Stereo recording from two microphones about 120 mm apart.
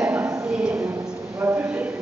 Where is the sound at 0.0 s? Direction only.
10° right (ahead or behind).